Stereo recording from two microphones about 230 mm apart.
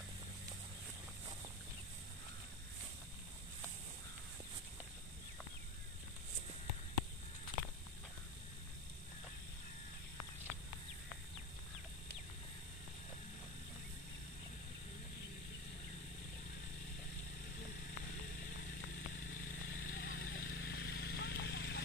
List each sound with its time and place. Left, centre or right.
19.8 s vehicle: left